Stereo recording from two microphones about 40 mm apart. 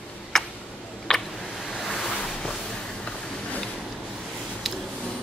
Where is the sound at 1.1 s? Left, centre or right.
Centre.